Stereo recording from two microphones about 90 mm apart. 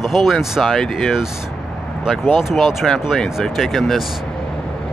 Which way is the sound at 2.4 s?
5° right (ahead or behind).